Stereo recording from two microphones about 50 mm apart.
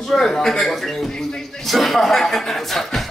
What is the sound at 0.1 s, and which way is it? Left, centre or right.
A man's voice, centre.